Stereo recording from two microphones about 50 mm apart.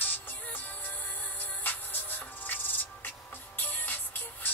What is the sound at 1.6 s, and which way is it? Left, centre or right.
Music, left.